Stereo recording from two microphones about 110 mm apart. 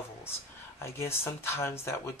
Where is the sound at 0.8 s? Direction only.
25° left (ahead or behind).